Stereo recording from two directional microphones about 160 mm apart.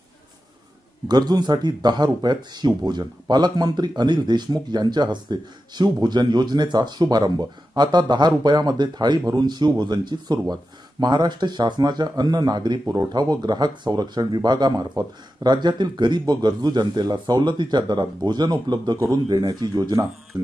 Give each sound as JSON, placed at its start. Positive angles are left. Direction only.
{"t": 1.0, "sound": "speech", "side_deg": -25}